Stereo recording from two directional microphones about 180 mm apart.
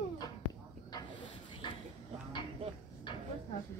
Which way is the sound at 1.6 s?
25° left (ahead or behind).